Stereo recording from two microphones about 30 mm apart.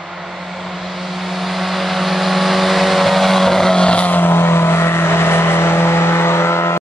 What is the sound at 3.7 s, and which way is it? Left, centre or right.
Vehicle, left.